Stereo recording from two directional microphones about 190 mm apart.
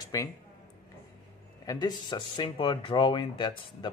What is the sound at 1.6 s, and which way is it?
Speech, 20° left (ahead or behind).